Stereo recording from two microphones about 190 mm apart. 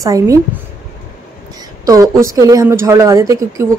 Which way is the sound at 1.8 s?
20° right (ahead or behind).